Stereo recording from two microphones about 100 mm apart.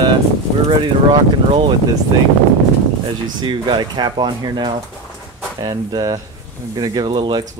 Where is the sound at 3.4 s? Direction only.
50° right (ahead or behind).